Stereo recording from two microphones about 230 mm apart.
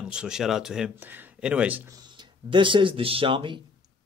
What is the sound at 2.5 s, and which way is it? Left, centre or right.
Speech, right.